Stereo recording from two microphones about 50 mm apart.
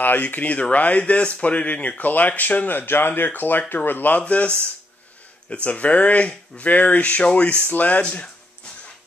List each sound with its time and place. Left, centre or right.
0.0 s speech: left